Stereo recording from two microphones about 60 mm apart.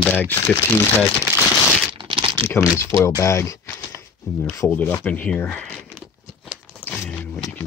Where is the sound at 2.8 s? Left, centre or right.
Left.